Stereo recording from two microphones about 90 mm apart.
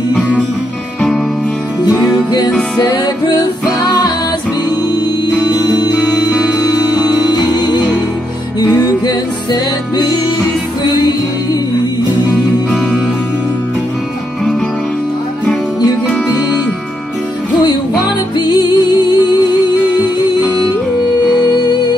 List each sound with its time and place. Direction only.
2.8 s music: 50° left (ahead or behind)
5.4 s music: 50° left (ahead or behind)
7.2 s music: 50° left (ahead or behind)
18.4 s music: 50° left (ahead or behind)